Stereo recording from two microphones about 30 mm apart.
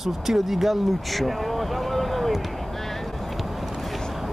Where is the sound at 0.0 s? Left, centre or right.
Centre.